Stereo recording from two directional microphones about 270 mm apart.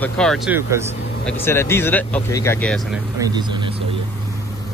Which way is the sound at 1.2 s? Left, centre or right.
Centre.